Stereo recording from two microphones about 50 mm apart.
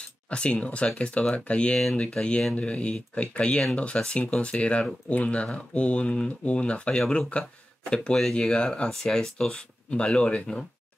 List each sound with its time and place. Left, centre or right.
0.3 s speech: left
8.2 s speech: centre